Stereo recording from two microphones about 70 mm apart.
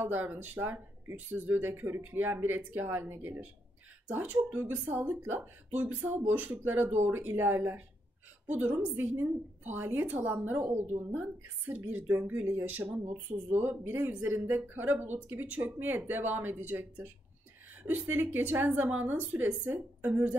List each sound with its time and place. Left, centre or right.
0.0 s speech: right